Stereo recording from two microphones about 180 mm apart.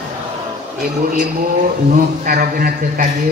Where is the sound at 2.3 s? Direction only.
55° right (ahead or behind).